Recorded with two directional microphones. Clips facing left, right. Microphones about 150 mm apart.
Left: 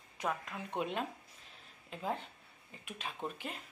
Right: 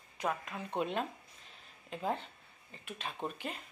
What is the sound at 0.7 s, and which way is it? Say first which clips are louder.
Speech: right 2 dB; 5° left (ahead or behind).